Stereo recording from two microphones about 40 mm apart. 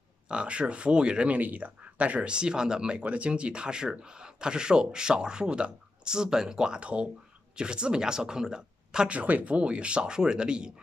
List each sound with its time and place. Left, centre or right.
0.3 s speech: right
1.3 s speech: right
1.8 s speech: right
3.0 s speech: right
9.1 s speech: right